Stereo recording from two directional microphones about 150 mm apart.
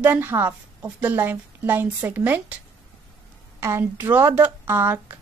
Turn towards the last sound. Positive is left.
turn(degrees=-15)  # may be behind; listen again after turning